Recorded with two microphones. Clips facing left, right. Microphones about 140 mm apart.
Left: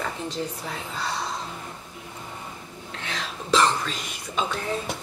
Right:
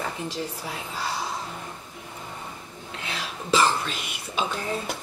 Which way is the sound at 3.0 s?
5° right (ahead or behind).